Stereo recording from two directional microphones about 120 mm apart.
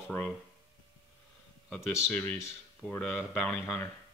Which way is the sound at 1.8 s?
15° left (ahead or behind).